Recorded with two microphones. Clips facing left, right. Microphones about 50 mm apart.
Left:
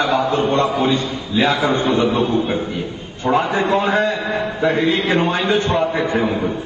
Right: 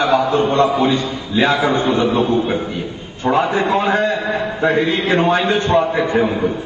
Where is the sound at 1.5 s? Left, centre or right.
Centre.